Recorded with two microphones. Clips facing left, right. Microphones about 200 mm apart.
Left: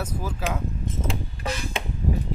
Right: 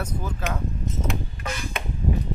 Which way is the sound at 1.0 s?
30° left (ahead or behind).